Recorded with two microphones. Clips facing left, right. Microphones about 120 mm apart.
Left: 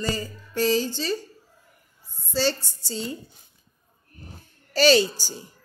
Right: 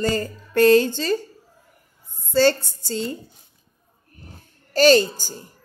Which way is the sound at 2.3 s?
55° right (ahead or behind).